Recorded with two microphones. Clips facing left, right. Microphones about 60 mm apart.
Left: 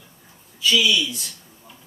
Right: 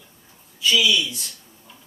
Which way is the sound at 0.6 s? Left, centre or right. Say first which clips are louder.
Even; centre.